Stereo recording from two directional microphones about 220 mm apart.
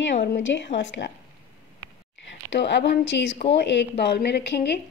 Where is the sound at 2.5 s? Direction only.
55° left (ahead or behind).